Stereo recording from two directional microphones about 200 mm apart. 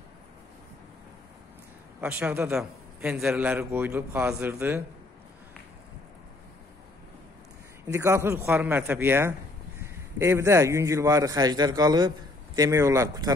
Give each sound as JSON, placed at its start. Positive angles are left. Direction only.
{"t": 2.0, "sound": "a man's voice", "side_deg": -5}
{"t": 7.8, "sound": "a man's voice", "side_deg": -15}